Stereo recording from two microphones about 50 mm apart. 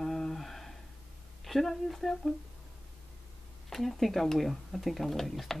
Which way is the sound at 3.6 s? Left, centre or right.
Centre.